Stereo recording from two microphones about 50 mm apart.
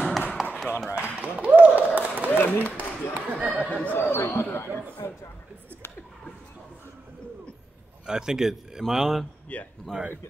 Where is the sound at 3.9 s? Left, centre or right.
Left.